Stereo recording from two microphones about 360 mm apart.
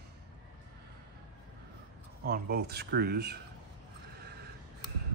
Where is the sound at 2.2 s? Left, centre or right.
Right.